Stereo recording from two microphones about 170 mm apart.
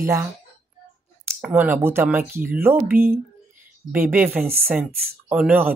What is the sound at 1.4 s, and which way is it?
Speech, 10° right (ahead or behind).